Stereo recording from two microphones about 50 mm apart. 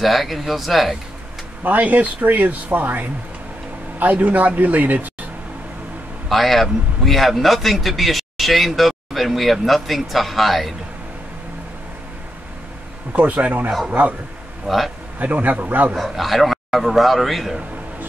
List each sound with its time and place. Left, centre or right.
0.0 s a man's voice: centre
1.6 s speech: right
6.2 s a man's voice: centre
13.1 s speech: right
14.7 s a man's voice: centre
15.1 s speech: right
16.0 s a man's voice: centre